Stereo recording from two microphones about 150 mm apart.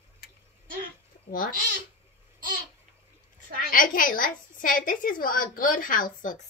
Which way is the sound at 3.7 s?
65° left (ahead or behind).